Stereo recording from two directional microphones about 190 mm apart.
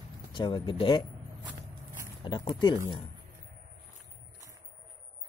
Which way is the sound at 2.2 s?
25° left (ahead or behind).